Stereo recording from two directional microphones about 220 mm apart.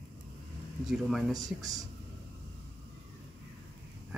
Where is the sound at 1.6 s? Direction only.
15° right (ahead or behind).